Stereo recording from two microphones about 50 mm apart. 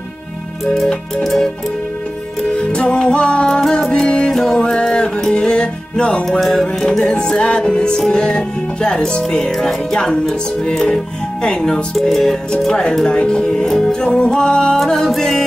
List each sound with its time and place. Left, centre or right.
1.2 s music: centre
2.5 s music: left; by 4.6 s centre
4.6 s music: centre
6.4 s music: centre
12.9 s music: centre
13.6 s music: centre
14.8 s music: centre